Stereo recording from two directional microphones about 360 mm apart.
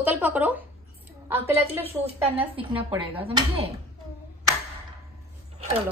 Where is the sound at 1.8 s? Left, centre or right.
Centre.